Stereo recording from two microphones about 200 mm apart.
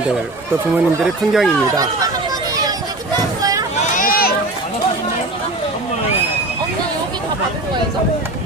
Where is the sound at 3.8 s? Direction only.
40° left (ahead or behind).